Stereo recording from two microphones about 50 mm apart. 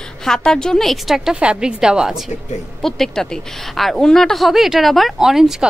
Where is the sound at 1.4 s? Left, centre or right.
Centre.